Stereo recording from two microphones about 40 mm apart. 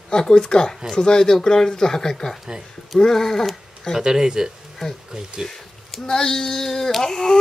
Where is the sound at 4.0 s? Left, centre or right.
Centre.